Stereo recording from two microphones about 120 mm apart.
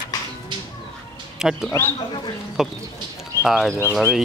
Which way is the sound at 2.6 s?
5° right (ahead or behind).